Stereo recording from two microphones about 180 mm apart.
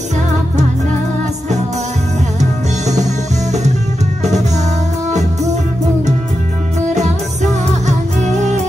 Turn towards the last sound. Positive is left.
turn(degrees=-40)  # may be behind; listen again after turning